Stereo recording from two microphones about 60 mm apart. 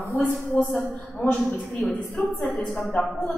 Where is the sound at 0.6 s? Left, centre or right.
Left.